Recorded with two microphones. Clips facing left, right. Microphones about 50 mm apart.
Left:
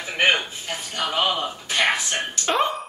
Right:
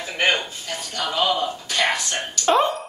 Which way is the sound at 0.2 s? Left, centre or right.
Left.